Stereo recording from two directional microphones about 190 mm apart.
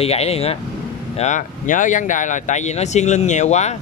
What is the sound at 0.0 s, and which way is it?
Speech, 35° left (ahead or behind).